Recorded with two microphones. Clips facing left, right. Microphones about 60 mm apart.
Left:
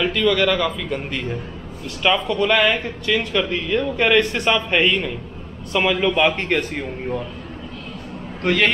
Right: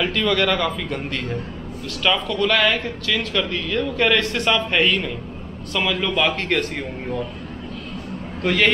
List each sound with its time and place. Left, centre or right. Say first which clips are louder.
0.0 s a man's voice: left 2 dB; centre
2.0 s speech: left 2 dB; centre
8.5 s a man's voice: even; centre